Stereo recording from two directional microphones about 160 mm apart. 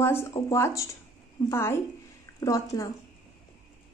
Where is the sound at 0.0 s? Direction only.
15° left (ahead or behind).